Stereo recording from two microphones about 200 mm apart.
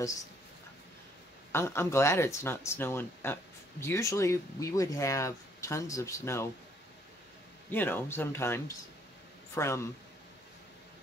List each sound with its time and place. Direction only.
1.5 s speech: 10° left (ahead or behind)
7.7 s speech: 10° left (ahead or behind)